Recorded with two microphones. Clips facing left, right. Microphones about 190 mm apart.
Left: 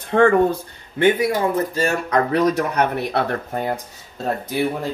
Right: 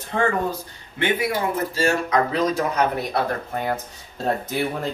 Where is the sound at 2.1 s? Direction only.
65° left (ahead or behind).